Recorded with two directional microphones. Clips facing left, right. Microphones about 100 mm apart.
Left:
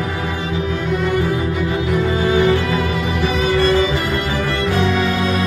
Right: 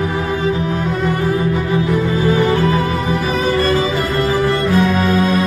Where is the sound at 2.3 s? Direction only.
40° right (ahead or behind).